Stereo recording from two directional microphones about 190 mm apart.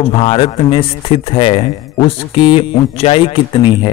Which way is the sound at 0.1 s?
30° left (ahead or behind).